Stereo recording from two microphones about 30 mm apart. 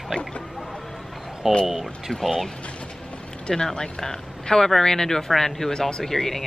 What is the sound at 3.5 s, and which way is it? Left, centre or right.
Speech, centre.